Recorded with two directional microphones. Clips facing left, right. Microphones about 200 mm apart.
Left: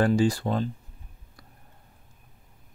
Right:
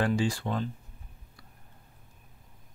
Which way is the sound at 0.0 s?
40° left (ahead or behind).